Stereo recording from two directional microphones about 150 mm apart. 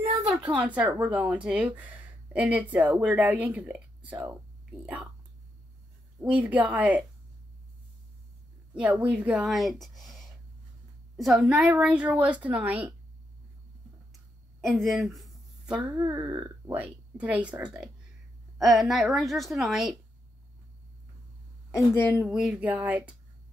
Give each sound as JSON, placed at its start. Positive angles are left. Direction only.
{"t": 0.3, "sound": "speech", "side_deg": -10}
{"t": 6.2, "sound": "speech", "side_deg": -10}
{"t": 8.7, "sound": "a woman's voice", "side_deg": -10}
{"t": 14.8, "sound": "speech", "side_deg": 0}
{"t": 16.0, "sound": "speech", "side_deg": -25}
{"t": 16.7, "sound": "a woman's voice", "side_deg": -10}
{"t": 21.7, "sound": "a woman's voice", "side_deg": 15}
{"t": 22.2, "sound": "speech", "side_deg": -5}